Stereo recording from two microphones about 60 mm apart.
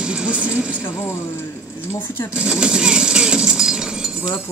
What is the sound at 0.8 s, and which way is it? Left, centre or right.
Speech, left.